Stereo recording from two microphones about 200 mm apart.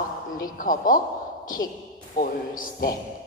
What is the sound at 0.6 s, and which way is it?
A man's voice, 45° left (ahead or behind).